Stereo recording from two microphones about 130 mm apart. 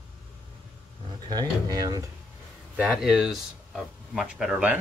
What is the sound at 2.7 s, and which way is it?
Speech, 5° right (ahead or behind).